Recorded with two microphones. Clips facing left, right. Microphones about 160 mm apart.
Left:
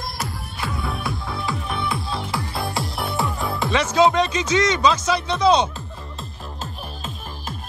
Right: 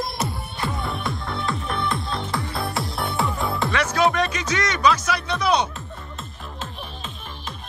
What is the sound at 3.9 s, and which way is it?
Music, 20° left (ahead or behind).